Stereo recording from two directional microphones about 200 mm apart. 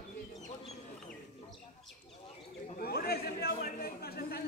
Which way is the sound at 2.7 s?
50° left (ahead or behind).